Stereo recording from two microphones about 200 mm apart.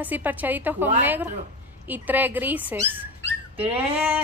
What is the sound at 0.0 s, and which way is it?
Speech, 10° right (ahead or behind).